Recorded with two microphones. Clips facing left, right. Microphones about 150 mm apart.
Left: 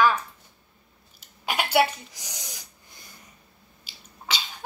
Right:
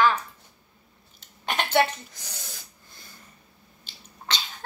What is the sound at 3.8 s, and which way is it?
Sneeze, 5° left (ahead or behind).